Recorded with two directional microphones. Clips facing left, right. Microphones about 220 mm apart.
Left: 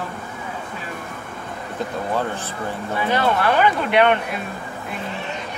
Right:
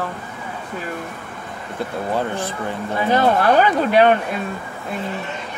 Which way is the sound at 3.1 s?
40° right (ahead or behind).